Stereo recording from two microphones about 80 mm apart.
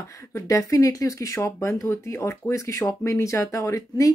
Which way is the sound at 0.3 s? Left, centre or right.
Left.